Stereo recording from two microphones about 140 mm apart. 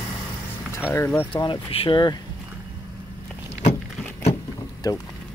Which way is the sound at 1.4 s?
35° left (ahead or behind).